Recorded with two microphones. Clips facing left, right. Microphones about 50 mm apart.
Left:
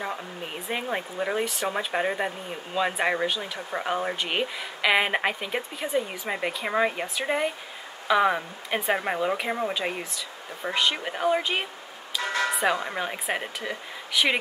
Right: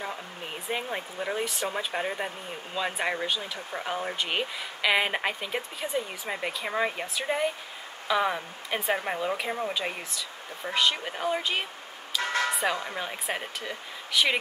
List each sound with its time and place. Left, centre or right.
0.9 s speech: centre
4.2 s speech: centre
9.8 s speech: centre
12.1 s bell: centre
12.7 s speech: left